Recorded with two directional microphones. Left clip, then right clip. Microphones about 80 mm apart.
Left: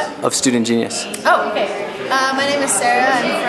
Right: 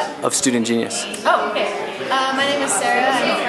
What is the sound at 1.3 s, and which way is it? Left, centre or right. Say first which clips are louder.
Speech: left 3 dB; centre.